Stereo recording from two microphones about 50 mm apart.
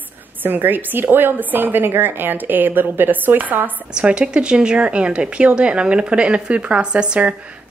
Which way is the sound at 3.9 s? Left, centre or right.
Right.